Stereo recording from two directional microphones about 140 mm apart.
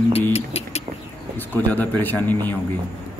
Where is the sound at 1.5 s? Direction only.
15° left (ahead or behind).